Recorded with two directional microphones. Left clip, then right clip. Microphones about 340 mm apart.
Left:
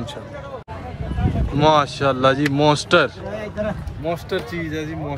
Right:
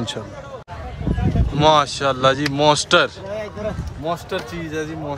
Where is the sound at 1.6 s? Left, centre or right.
Centre.